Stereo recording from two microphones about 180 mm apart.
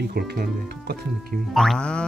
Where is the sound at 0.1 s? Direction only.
60° right (ahead or behind).